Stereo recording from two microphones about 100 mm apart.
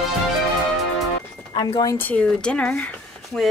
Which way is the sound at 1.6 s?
40° left (ahead or behind).